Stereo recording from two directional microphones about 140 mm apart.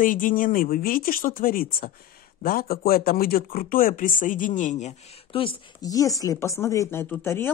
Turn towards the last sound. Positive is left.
turn(degrees=15)  # may be behind; listen again after turning